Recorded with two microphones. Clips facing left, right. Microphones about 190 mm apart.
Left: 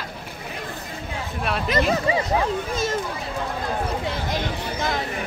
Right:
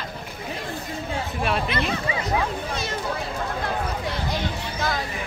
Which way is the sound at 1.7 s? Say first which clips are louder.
Left 5 dB; 40° left (ahead or behind).